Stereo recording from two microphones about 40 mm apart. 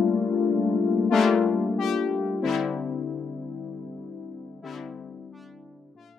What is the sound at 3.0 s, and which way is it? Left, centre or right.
Music, left.